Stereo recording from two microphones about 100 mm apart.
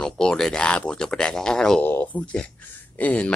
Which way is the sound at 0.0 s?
10° left (ahead or behind).